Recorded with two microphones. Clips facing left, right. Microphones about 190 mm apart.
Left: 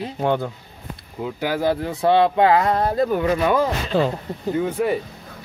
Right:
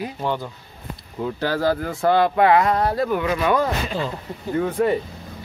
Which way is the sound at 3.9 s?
65° left (ahead or behind).